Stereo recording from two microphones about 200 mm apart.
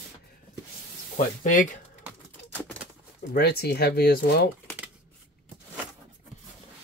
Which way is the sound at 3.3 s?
50° left (ahead or behind).